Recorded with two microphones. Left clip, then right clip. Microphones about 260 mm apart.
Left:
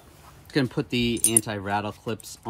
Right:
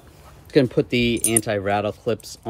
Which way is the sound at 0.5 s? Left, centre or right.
Centre.